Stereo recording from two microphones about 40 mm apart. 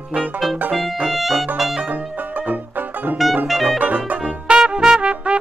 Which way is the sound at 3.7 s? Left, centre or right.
Right.